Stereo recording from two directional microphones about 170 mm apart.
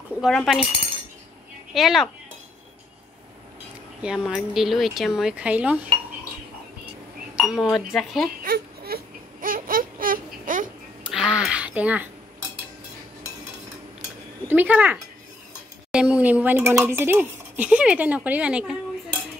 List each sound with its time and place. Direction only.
0.2 s speech: centre (ahead or behind)
1.7 s speech: centre (ahead or behind)
4.0 s speech: 5° right (ahead or behind)
7.3 s speech: 5° right (ahead or behind)
8.4 s baby cry: 60° right (ahead or behind)
11.1 s a sound: 5° right (ahead or behind)
14.5 s a woman's voice: 10° right (ahead or behind)